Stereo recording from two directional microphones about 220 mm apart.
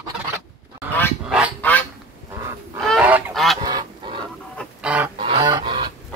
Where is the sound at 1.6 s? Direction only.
5° left (ahead or behind).